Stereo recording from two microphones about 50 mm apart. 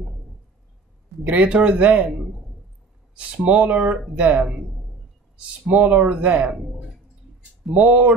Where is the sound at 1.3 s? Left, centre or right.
Right.